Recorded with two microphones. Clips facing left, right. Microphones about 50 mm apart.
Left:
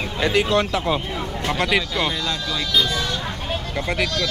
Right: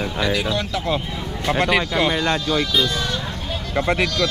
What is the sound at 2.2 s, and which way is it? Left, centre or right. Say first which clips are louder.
Speech: right 5 dB; right.